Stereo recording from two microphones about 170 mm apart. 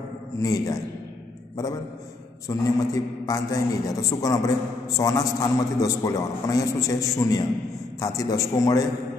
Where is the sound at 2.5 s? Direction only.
20° left (ahead or behind).